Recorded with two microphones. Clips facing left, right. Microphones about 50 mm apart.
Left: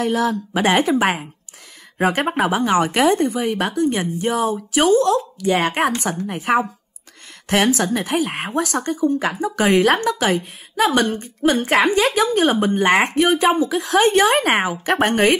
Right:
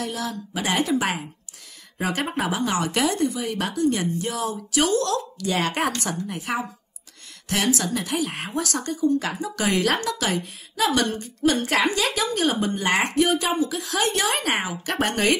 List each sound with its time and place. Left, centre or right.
0.0 s speech: left